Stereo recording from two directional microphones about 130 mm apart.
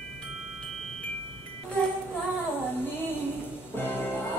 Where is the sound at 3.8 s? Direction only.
15° left (ahead or behind).